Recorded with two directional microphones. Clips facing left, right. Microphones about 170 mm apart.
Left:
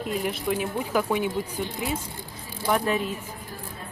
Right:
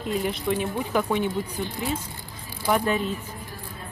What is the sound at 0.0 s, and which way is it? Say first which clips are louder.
Speech: right 1 dB; 5° left (ahead or behind).